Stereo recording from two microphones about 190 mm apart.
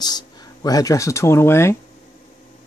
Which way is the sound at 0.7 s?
20° left (ahead or behind).